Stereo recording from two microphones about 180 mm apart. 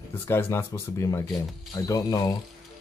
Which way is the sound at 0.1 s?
15° left (ahead or behind).